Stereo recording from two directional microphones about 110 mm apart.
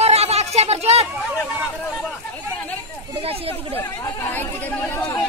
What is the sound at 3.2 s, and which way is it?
Speech, 60° right (ahead or behind).